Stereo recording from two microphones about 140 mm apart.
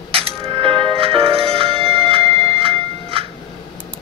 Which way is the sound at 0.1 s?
40° right (ahead or behind).